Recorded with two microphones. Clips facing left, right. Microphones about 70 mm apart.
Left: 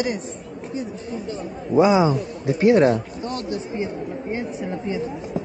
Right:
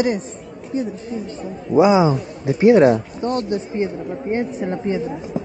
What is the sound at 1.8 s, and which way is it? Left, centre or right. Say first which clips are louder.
Speech: right 2 dB; centre.